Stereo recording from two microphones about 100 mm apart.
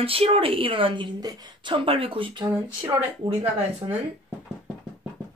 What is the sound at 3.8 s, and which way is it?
Speech, 35° right (ahead or behind).